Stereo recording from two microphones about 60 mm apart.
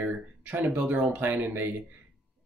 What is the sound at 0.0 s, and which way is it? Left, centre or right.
Speech, right.